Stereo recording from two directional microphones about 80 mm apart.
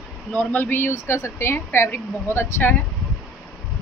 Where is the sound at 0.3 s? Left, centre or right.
Centre.